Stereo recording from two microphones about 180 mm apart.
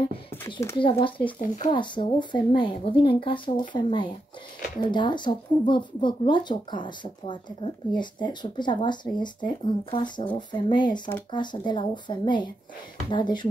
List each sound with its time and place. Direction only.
0.5 s speech: 15° left (ahead or behind)
0.7 s speech: 30° left (ahead or behind)